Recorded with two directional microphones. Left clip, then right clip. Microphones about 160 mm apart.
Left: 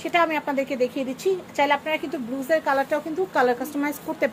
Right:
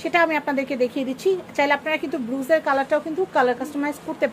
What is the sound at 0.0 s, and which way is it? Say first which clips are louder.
Speech: right 2 dB; 20° right (ahead or behind).